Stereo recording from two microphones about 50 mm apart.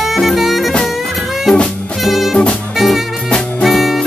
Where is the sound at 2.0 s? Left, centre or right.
Centre.